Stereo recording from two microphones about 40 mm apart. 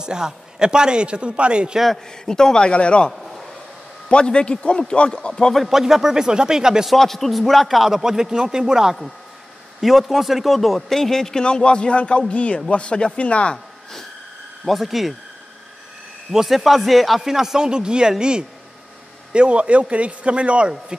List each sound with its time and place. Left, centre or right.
0.0 s a man's voice: centre
1.9 s speech: centre
3.1 s a sound: centre
4.1 s speech: left
5.7 s a man's voice: centre
6.9 s a man's voice: centre
9.8 s a man's voice: centre
11.4 s speech: left
14.6 s a man's voice: centre
16.3 s a man's voice: centre; by 18.1 s right
19.3 s a man's voice: right